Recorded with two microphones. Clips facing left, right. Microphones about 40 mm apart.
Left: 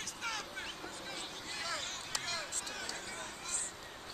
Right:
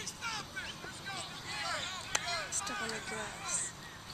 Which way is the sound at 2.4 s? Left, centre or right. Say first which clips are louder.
Right 3 dB; right.